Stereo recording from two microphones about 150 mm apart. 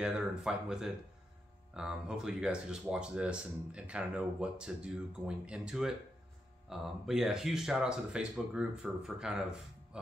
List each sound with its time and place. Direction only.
0.0 s speech: 5° right (ahead or behind)